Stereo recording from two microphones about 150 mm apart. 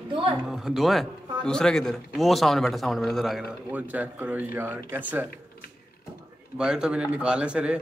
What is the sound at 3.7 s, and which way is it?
Speech, 10° right (ahead or behind).